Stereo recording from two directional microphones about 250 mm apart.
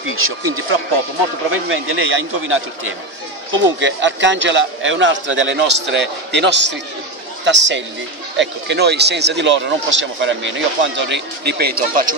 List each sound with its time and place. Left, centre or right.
0.1 s speech: right